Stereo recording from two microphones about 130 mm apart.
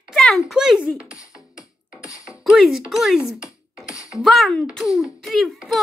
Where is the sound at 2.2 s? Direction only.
5° right (ahead or behind).